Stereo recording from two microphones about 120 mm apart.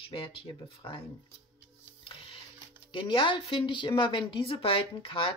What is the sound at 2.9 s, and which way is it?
Speech, 45° left (ahead or behind).